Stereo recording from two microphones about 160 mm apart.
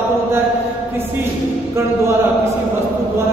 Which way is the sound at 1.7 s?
15° right (ahead or behind).